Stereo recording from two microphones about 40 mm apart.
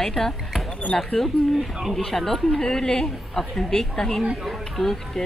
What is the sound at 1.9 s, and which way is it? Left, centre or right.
A woman's voice, centre.